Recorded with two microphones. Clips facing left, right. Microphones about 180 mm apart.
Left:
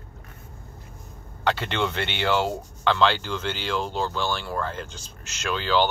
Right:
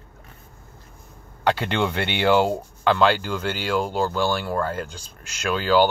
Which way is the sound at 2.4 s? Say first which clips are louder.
Right 5 dB; 45° right (ahead or behind).